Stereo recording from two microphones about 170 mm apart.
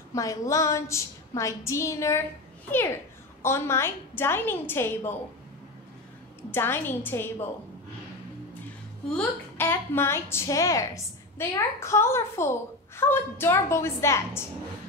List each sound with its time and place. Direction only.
0.1 s a woman's voice: 20° left (ahead or behind)
3.4 s a woman's voice: 15° left (ahead or behind)
6.5 s a woman's voice: 15° left (ahead or behind)
9.1 s a woman's voice: 10° left (ahead or behind)